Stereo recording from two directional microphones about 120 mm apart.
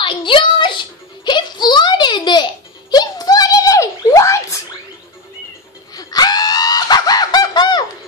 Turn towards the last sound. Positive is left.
turn(degrees=35)  # may be behind; listen again after turning